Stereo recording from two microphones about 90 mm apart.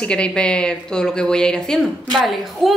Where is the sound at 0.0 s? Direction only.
10° left (ahead or behind).